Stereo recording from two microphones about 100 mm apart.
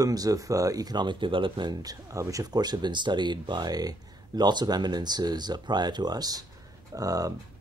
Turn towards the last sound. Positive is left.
turn(degrees=-35)  # may be behind; listen again after turning